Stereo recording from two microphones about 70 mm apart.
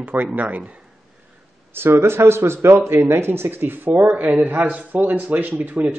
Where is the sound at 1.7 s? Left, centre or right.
Right.